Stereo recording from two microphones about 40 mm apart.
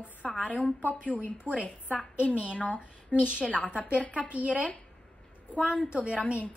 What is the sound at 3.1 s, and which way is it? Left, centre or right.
Speech, right.